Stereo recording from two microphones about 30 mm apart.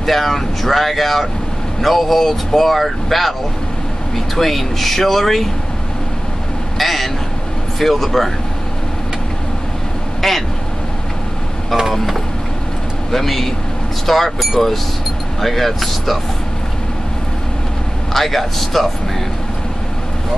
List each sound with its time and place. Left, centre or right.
0.0 s speech: centre
4.4 s speech: centre
6.8 s vehicle: centre
7.8 s speech: centre
10.2 s speech: centre
11.9 s speech: centre
14.6 s speech: left
15.4 s speech: centre
18.1 s speech: centre